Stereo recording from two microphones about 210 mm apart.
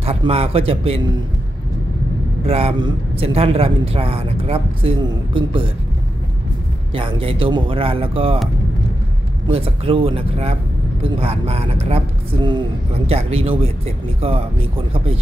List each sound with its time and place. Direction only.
0.0 s speech: 30° right (ahead or behind)
2.4 s speech: 30° right (ahead or behind)
6.9 s speech: 25° right (ahead or behind)
9.5 s speech: 25° right (ahead or behind)